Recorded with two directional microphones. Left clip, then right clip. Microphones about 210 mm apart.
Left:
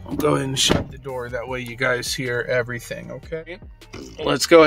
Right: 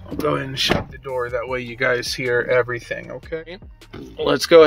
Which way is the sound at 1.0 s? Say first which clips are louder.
Right 4 dB; centre (ahead or behind).